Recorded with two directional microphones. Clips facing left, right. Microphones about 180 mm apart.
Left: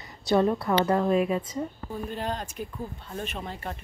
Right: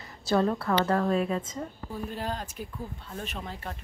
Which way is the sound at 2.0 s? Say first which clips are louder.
Left 2 dB; 5° right (ahead or behind).